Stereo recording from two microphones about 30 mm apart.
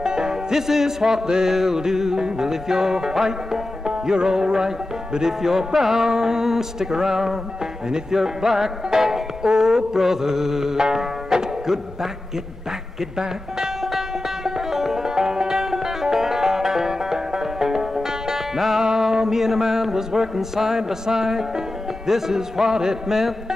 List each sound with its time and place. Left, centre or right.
0.0 s music: right
0.5 s music: centre
6.0 s music: right
13.8 s music: centre
18.8 s a sound: centre